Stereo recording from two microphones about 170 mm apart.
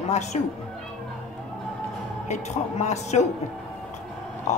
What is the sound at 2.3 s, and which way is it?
Speech, 40° left (ahead or behind).